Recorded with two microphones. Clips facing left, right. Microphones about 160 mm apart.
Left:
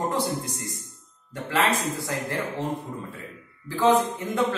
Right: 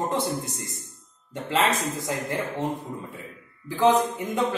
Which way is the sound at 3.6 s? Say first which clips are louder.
Even; 15° right (ahead or behind).